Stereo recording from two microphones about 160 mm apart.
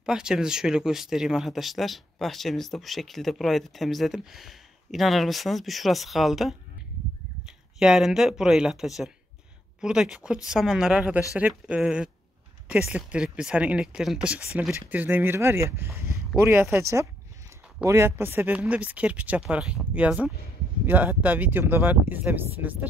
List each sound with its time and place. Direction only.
0.0 s speech: 5° right (ahead or behind)